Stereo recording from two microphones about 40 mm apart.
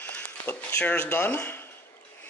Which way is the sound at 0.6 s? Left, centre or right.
Left.